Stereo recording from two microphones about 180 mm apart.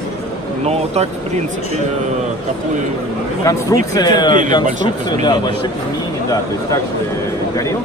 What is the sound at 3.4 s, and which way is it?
Speech, 20° left (ahead or behind).